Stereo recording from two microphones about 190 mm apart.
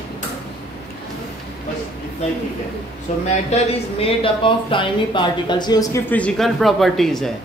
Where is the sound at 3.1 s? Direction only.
40° left (ahead or behind).